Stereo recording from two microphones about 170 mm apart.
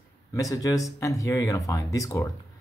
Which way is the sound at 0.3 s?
20° left (ahead or behind).